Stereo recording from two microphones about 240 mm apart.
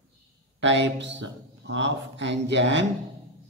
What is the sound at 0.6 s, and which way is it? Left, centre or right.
A man's voice, right.